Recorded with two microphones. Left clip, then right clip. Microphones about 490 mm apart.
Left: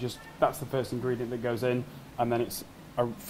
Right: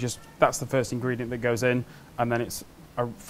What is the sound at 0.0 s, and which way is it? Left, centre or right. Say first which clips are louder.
Speech: right 4 dB; right.